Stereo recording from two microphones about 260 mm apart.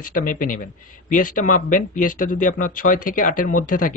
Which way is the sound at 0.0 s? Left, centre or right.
Left.